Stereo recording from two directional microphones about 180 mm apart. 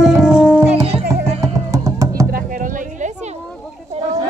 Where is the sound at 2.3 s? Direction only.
50° right (ahead or behind).